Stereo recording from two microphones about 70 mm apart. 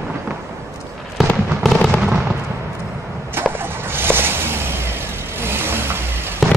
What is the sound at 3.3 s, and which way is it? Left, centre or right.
Vehicle, right.